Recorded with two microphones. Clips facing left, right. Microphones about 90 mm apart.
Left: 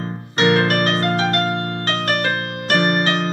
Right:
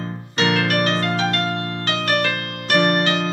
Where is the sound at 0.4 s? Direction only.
35° left (ahead or behind).